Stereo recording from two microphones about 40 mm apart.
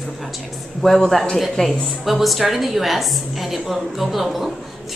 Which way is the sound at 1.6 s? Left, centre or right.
Left.